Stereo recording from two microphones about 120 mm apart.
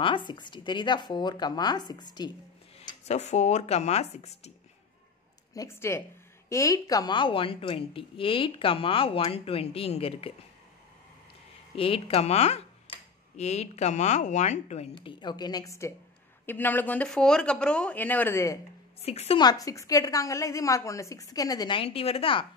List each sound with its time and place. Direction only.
0.0 s a woman's voice: 40° left (ahead or behind)
3.1 s a woman's voice: 70° left (ahead or behind)
5.5 s a woman's voice: 25° left (ahead or behind); by 10.3 s 55° left (ahead or behind)
11.7 s a woman's voice: 50° left (ahead or behind); by 14.9 s 70° left (ahead or behind)
15.0 s a woman's voice: 40° left (ahead or behind)
16.4 s speech: 15° left (ahead or behind)
19.0 s a woman's voice: 55° left (ahead or behind)
19.3 s a woman's voice: 35° left (ahead or behind)